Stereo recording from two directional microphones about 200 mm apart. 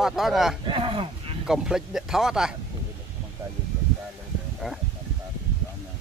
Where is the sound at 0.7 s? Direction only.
25° right (ahead or behind).